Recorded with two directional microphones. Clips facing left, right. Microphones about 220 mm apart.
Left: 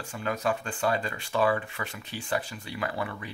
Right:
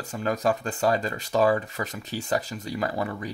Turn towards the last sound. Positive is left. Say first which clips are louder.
# right 4 dB
turn(degrees=-40)  # may be behind; listen again after turning